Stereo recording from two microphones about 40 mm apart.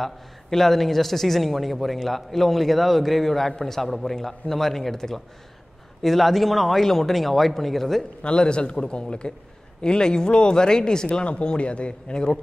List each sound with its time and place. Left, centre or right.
0.0 s a man's voice: centre
8.2 s speech: left
11.1 s speech: left